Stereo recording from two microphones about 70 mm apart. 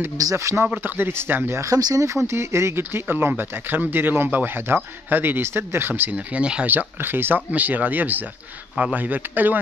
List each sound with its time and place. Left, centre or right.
0.2 s speech: right
0.8 s speech: right
1.6 s speech: right
2.2 s speech: right
6.1 s speech: centre
6.7 s speech: right